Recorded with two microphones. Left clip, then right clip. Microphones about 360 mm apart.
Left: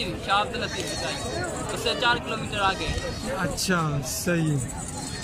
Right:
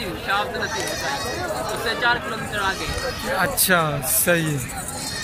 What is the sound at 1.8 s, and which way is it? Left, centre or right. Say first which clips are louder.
Speech: right 2 dB; centre.